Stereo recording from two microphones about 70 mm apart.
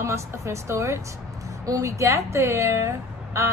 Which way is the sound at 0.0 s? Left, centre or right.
Right.